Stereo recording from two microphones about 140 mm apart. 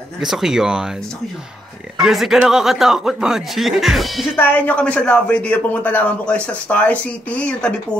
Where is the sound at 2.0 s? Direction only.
Centre (ahead or behind).